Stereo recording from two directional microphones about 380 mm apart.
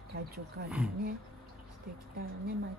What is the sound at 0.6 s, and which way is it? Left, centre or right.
Speech, centre.